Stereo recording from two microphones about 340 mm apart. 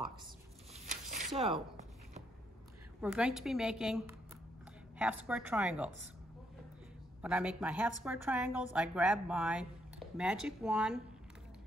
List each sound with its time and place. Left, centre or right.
1.1 s a sound: centre
3.0 s a woman's voice: centre
7.2 s a woman's voice: centre